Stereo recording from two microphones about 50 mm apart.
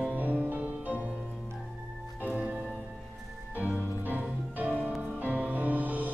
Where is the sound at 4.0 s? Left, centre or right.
Right.